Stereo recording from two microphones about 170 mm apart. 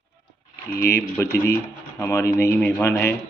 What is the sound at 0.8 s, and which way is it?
Speech, 15° left (ahead or behind).